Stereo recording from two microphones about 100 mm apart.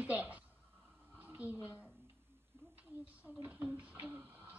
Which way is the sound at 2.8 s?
15° right (ahead or behind).